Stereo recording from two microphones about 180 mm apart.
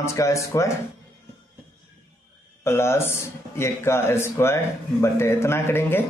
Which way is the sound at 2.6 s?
15° left (ahead or behind).